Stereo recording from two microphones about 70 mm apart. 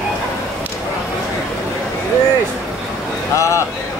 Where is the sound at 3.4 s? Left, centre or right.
Left.